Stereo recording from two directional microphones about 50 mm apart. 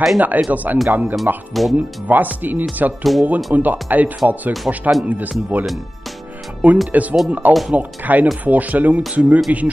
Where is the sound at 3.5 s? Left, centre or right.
Right.